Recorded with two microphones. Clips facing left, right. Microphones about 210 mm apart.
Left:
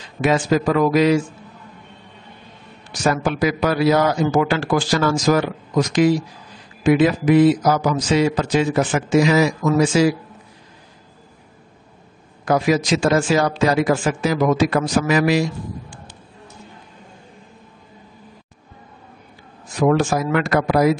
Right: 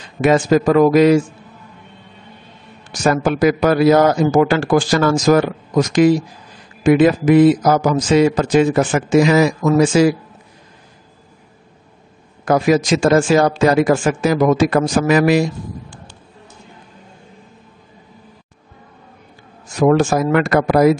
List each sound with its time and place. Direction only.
0.2 s a man's voice: 50° right (ahead or behind)
2.9 s a man's voice: 45° right (ahead or behind)
12.4 s a man's voice: 50° right (ahead or behind)
19.9 s a man's voice: 45° right (ahead or behind)